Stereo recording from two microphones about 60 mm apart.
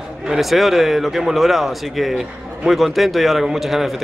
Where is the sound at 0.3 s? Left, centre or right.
Centre.